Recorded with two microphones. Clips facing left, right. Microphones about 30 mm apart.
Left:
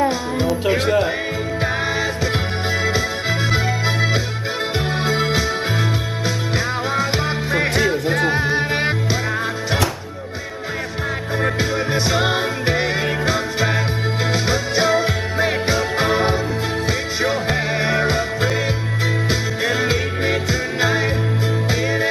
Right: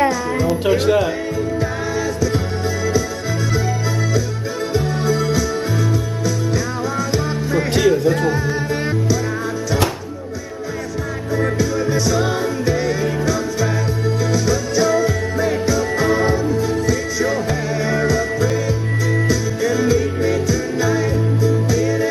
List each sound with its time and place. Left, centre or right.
0.7 s speech: left
4.7 s music: left
7.1 s music: left
11.3 s music: left